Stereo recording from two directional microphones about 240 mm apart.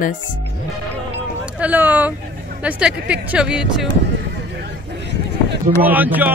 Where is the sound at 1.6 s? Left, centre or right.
Centre.